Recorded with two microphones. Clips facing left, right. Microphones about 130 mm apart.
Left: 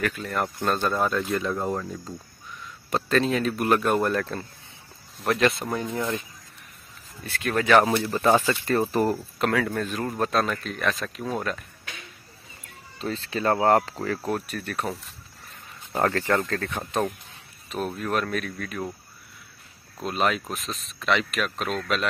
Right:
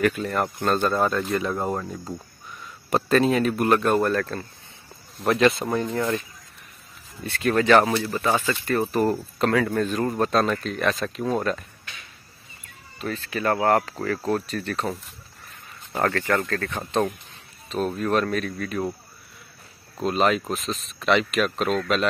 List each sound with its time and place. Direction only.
0.0 s speech: 5° right (ahead or behind)
1.6 s speech: 20° right (ahead or behind)
2.9 s speech: 5° right (ahead or behind)
3.6 s speech: 5° left (ahead or behind)
5.2 s speech: centre (ahead or behind)
7.2 s speech: centre (ahead or behind)
8.0 s speech: 30° left (ahead or behind)
9.0 s speech: 5° left (ahead or behind)
13.0 s speech: 25° left (ahead or behind); by 18.8 s centre (ahead or behind)
20.0 s speech: centre (ahead or behind)